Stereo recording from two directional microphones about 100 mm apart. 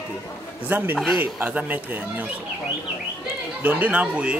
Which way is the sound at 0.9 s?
Centre (ahead or behind).